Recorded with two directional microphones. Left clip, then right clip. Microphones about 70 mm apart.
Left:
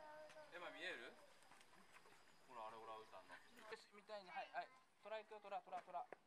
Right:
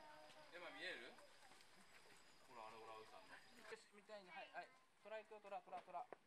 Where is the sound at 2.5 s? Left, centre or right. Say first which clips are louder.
Left 3 dB; left.